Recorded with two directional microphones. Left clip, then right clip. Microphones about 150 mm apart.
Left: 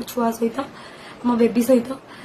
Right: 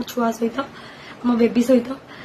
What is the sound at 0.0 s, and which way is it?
A woman's voice, 15° left (ahead or behind).